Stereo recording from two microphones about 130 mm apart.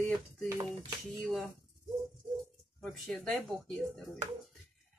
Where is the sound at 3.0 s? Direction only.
10° left (ahead or behind).